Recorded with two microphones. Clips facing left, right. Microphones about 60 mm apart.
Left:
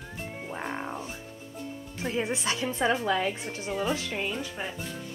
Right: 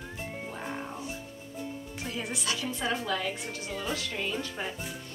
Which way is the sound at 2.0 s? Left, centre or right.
Left.